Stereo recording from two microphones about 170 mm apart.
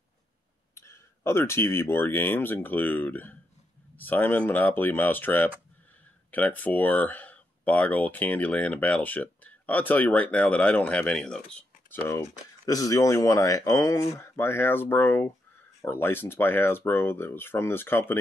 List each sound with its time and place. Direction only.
0.7 s speech: 15° left (ahead or behind)